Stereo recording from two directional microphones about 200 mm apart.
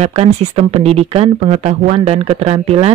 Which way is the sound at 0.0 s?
30° right (ahead or behind).